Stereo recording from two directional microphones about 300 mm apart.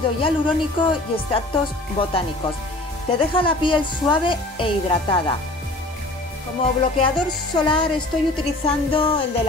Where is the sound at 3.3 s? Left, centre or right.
Centre.